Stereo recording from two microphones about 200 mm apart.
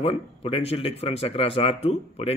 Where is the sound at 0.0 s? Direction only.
30° left (ahead or behind).